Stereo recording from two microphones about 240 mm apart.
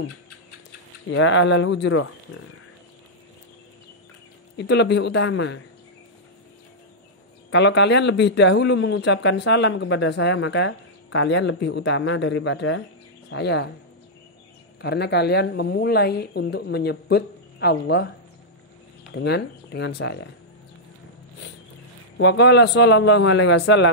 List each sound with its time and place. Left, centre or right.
1.1 s speech: left
4.6 s speech: left
7.5 s speech: left
14.8 s speech: left
19.1 s speech: left
22.1 s speech: left